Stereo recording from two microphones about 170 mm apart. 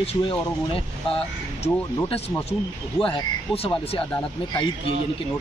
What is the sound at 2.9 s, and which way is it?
Speech, 30° left (ahead or behind).